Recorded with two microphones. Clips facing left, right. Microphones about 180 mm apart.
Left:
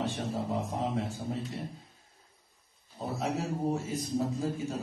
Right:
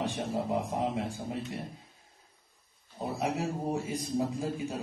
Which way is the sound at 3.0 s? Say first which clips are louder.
Right 1 dB; 15° right (ahead or behind).